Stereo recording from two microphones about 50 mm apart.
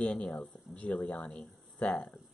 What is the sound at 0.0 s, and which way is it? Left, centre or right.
Speech, left.